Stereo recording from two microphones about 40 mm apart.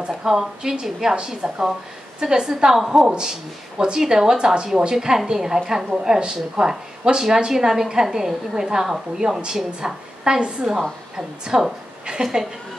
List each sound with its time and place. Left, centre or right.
0.2 s a woman's voice: centre
9.7 s a woman's voice: centre